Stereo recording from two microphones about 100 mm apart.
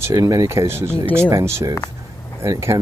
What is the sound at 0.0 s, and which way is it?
Speech, 35° right (ahead or behind).